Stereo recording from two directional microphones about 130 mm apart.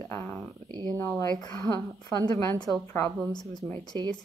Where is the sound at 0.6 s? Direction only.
35° right (ahead or behind).